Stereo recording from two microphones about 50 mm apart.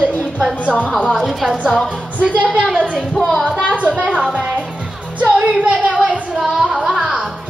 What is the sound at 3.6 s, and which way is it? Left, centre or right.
Speech, right.